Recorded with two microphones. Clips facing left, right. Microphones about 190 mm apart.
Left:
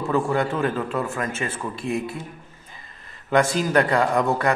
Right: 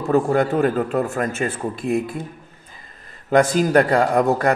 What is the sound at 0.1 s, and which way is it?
A man's voice, 40° right (ahead or behind).